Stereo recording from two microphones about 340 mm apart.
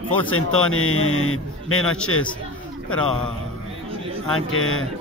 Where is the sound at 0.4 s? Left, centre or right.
Left.